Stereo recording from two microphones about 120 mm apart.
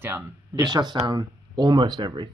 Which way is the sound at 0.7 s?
35° right (ahead or behind).